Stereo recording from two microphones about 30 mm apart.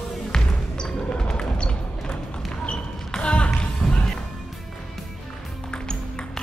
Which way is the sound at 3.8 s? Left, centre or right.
Left.